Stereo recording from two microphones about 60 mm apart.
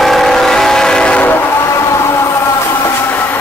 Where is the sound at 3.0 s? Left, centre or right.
Left.